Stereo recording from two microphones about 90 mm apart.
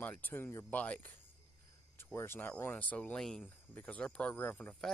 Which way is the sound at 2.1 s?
25° left (ahead or behind).